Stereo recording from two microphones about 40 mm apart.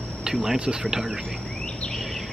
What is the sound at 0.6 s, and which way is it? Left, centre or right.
Speech, right.